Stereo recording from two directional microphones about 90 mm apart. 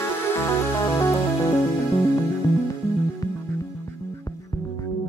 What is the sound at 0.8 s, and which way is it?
Music, 35° left (ahead or behind).